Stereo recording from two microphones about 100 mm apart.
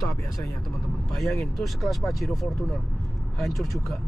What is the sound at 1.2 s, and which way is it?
Speech, centre (ahead or behind).